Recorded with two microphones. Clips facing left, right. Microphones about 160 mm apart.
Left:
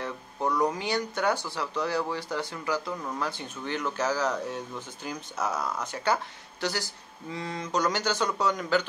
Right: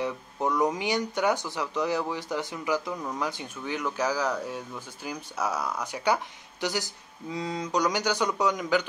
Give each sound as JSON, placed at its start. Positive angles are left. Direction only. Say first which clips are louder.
{"t": 0.0, "sound": "speech", "louder": "right 2 dB", "side_deg": -15}